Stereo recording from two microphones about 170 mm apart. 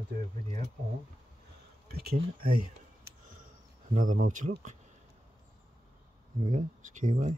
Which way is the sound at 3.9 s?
50° right (ahead or behind).